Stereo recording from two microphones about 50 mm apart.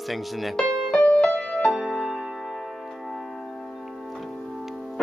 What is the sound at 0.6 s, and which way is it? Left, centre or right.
Music, left.